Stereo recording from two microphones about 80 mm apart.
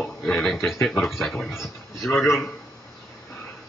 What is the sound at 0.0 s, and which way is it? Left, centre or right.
Speech, centre.